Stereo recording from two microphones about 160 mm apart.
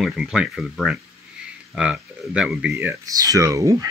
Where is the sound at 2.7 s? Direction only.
15° right (ahead or behind).